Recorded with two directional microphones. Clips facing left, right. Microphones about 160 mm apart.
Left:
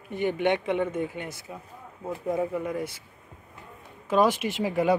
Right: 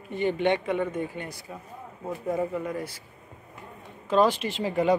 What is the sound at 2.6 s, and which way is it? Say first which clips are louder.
Speech: left 1 dB; 15° left (ahead or behind).